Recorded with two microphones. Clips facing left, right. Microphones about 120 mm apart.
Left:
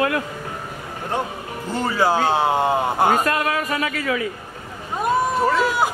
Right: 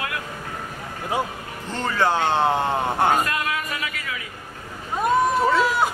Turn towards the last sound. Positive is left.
turn(degrees=0)  # may be behind; listen again after turning